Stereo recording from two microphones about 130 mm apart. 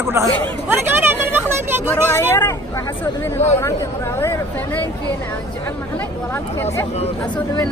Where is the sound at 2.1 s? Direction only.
20° left (ahead or behind).